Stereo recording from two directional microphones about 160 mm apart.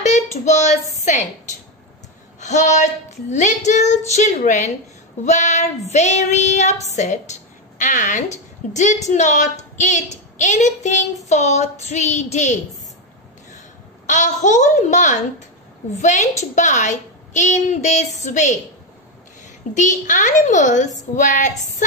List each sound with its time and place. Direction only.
0.0 s a sound: 45° left (ahead or behind)
1.0 s a woman's voice: 50° left (ahead or behind)
14.0 s a woman's voice: 50° left (ahead or behind)
19.7 s a woman's voice: 50° left (ahead or behind)